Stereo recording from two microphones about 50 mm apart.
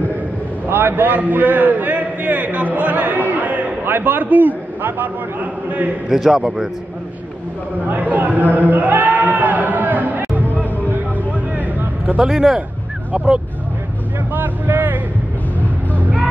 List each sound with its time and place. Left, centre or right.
0.7 s a man's voice: right
6.0 s a man's voice: centre
7.9 s a man's voice: right
8.5 s a sound: right
10.4 s music: left
10.9 s a sound: right
12.2 s a man's voice: centre
13.1 s speech: right
14.3 s a sound: right
16.0 s music: right